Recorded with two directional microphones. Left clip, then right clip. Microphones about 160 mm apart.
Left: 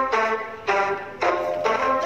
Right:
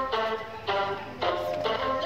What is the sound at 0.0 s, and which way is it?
Music, 30° left (ahead or behind).